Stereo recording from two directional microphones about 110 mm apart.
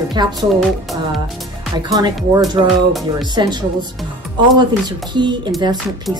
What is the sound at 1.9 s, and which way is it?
Speech, 40° right (ahead or behind).